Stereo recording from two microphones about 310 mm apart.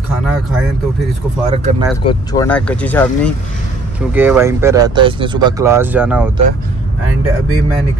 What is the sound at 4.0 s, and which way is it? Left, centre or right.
Speech, centre.